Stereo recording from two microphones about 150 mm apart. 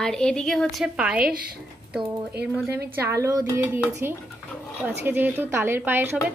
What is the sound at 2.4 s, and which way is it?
Speech, 5° right (ahead or behind).